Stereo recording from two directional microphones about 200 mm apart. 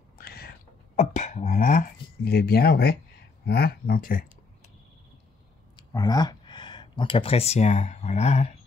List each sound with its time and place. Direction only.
0.2 s whispering: 50° left (ahead or behind)
0.9 s speech: 35° left (ahead or behind)
5.8 s speech: 20° left (ahead or behind)